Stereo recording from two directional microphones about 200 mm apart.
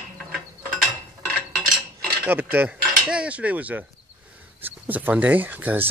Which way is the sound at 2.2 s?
10° right (ahead or behind).